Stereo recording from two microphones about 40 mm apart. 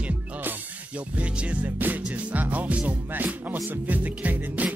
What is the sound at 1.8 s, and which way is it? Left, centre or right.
Music, right.